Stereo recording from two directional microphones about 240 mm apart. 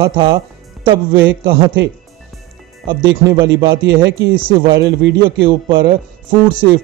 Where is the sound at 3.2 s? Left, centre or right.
Centre.